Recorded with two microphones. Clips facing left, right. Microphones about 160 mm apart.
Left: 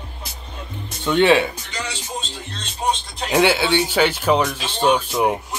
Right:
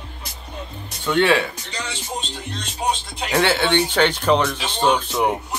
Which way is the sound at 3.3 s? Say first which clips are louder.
Left 2 dB; 10° left (ahead or behind).